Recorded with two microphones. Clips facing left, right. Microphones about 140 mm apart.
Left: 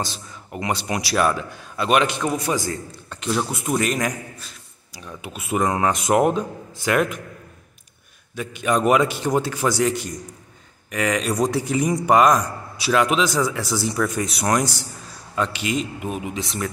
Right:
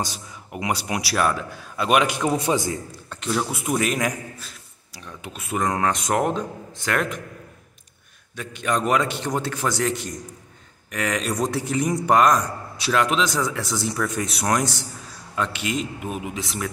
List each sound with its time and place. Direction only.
0.0 s speech: 10° right (ahead or behind)
2.3 s a man's voice: 25° right (ahead or behind)
3.1 s a man's voice: centre (ahead or behind)
8.4 s a man's voice: 5° left (ahead or behind)